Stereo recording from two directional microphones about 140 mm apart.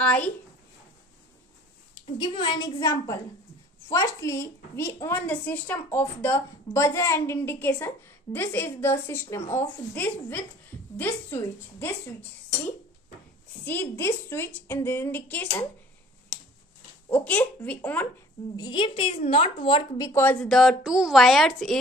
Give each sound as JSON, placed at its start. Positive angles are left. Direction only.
{"t": 0.0, "sound": "a woman's voice", "side_deg": 10}
{"t": 2.0, "sound": "a woman's voice", "side_deg": 35}
{"t": 13.7, "sound": "a woman's voice", "side_deg": 15}
{"t": 17.1, "sound": "a woman's voice", "side_deg": 10}
{"t": 18.6, "sound": "a woman's voice", "side_deg": 35}
{"t": 20.0, "sound": "a woman's voice", "side_deg": 20}
{"t": 20.4, "sound": "speech", "side_deg": 0}